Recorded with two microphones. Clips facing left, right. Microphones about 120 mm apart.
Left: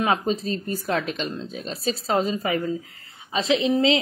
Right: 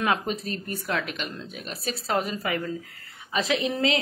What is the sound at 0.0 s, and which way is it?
A woman's voice, 30° left (ahead or behind).